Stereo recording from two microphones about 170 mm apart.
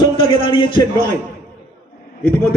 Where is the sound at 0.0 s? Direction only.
30° left (ahead or behind).